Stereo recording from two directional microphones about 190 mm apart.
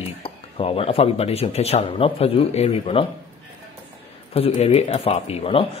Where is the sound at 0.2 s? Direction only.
30° left (ahead or behind).